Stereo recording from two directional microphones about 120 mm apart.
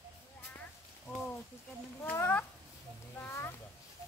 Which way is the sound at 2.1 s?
15° left (ahead or behind).